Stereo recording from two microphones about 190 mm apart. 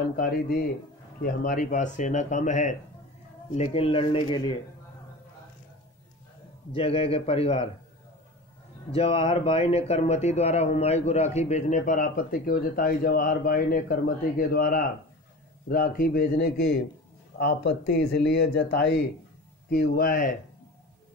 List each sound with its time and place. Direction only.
0.1 s speech: 50° left (ahead or behind); by 4.6 s 25° left (ahead or behind)
6.7 s speech: 30° left (ahead or behind)
8.9 s speech: 30° left (ahead or behind); by 20.2 s 50° left (ahead or behind)